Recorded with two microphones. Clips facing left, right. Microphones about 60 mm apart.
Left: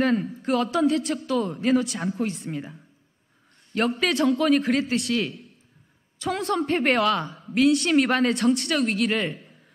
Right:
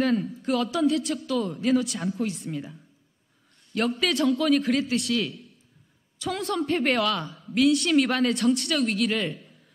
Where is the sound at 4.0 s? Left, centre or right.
Left.